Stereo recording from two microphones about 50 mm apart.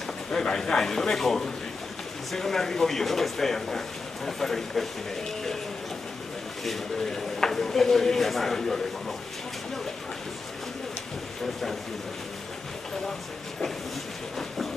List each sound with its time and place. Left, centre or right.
0.3 s speech: centre
6.6 s speech: centre